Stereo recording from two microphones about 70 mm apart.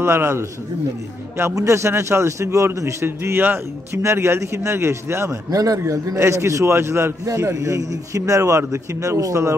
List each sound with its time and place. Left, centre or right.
0.0 s a man's voice: right
1.5 s a man's voice: right